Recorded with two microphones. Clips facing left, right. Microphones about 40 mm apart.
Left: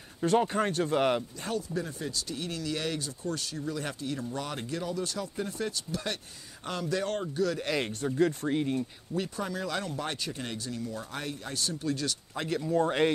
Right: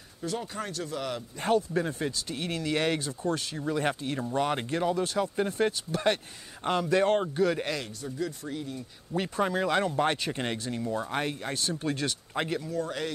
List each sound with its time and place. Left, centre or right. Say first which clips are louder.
0.2 s speech: left 8 dB; left
1.4 s speech: right 7 dB; right
7.8 s speech: left 7 dB; left
9.1 s speech: right 6 dB; right
12.6 s speech: left 6 dB; left